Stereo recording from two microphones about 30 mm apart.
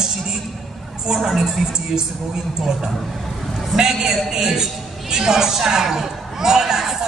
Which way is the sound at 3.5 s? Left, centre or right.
Centre.